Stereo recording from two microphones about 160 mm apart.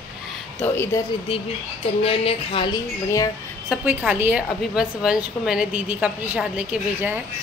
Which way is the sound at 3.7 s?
10° right (ahead or behind).